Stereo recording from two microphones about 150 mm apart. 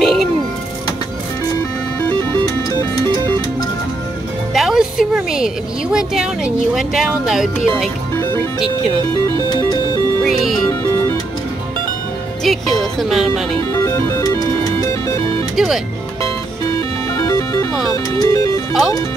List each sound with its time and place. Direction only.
0.0 s music: centre (ahead or behind)
4.6 s a woman's voice: centre (ahead or behind)
10.2 s music: centre (ahead or behind)
12.5 s a woman's voice: centre (ahead or behind)
13.6 s music: 20° left (ahead or behind)
15.5 s a woman's voice: centre (ahead or behind)
17.1 s music: 20° left (ahead or behind)
17.9 s speech: 25° left (ahead or behind)